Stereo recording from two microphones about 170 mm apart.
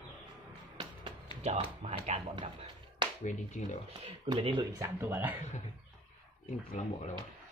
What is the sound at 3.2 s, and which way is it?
Speech, 45° left (ahead or behind).